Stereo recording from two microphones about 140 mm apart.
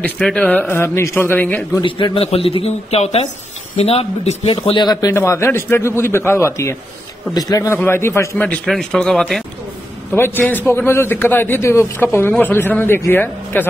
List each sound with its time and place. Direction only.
0.0 s a man's voice: 10° left (ahead or behind)
1.8 s a man's voice: 35° left (ahead or behind)
5.1 s a man's voice: 20° left (ahead or behind)
10.1 s a man's voice: 15° left (ahead or behind)